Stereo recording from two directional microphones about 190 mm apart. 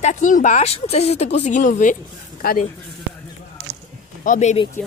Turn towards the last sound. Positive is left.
turn(degrees=35)  # may be behind; listen again after turning